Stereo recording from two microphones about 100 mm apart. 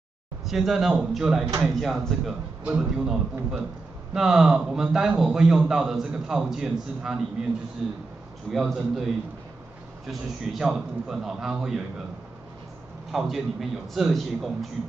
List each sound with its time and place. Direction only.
0.5 s a man's voice: centre (ahead or behind)
2.6 s a man's voice: 15° right (ahead or behind); by 8.7 s centre (ahead or behind)
10.0 s a man's voice: 5° right (ahead or behind)
13.1 s a man's voice: centre (ahead or behind)